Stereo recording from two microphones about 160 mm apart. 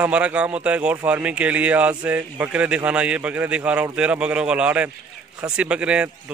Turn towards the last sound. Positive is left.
turn(degrees=-5)  # may be behind; listen again after turning